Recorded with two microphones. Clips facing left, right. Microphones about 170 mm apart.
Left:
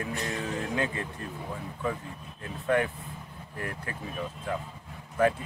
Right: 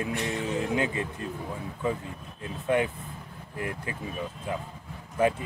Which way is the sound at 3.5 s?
20° right (ahead or behind).